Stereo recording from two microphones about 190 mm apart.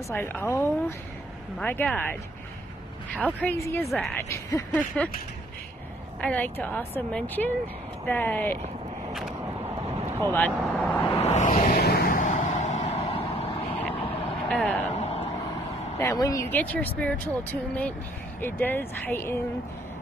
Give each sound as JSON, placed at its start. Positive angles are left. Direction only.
{"t": 0.1, "sound": "speech", "side_deg": 10}
{"t": 3.2, "sound": "speech", "side_deg": 10}
{"t": 6.2, "sound": "speech", "side_deg": 10}
{"t": 10.3, "sound": "speech", "side_deg": 5}
{"t": 11.1, "sound": "vehicle", "side_deg": 35}
{"t": 11.8, "sound": "vehicle", "side_deg": 55}
{"t": 14.5, "sound": "speech", "side_deg": 5}
{"t": 15.0, "sound": "vehicle", "side_deg": 30}
{"t": 16.0, "sound": "speech", "side_deg": 15}